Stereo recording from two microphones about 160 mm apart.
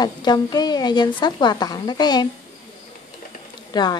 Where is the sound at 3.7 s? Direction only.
25° left (ahead or behind).